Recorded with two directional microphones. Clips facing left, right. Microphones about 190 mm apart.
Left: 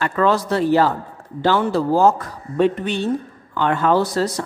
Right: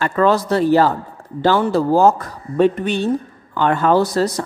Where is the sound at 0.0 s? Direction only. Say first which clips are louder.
Right 2 dB; 35° right (ahead or behind).